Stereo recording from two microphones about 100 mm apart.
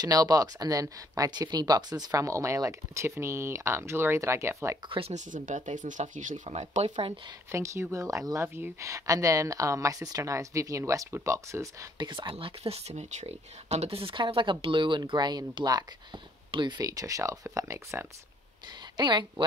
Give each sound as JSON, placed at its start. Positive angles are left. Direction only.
{"t": 0.0, "sound": "speech", "side_deg": -40}
{"t": 4.8, "sound": "speech", "side_deg": -60}
{"t": 6.0, "sound": "speech", "side_deg": -90}
{"t": 7.5, "sound": "speech", "side_deg": -30}
{"t": 12.0, "sound": "speech", "side_deg": -55}
{"t": 13.7, "sound": "speech", "side_deg": -80}
{"t": 16.8, "sound": "speech", "side_deg": -35}
{"t": 18.9, "sound": "speech", "side_deg": -50}